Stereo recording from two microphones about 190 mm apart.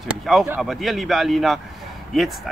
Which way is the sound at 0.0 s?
Centre (ahead or behind).